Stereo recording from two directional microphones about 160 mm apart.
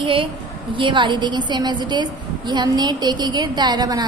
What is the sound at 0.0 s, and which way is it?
A woman's voice, 30° right (ahead or behind).